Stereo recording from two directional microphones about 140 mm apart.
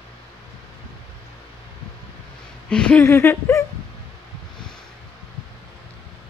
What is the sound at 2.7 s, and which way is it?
Speech, 5° left (ahead or behind).